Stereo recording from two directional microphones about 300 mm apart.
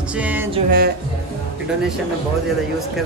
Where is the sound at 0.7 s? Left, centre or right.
Right.